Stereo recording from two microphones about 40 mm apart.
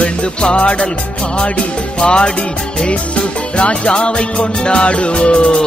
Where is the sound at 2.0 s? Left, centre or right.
Left.